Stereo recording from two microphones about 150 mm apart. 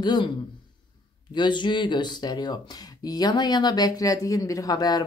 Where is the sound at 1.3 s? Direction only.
30° left (ahead or behind).